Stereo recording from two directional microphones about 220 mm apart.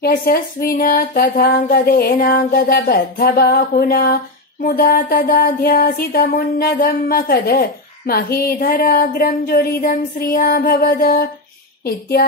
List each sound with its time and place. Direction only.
0.0 s speech: 40° left (ahead or behind)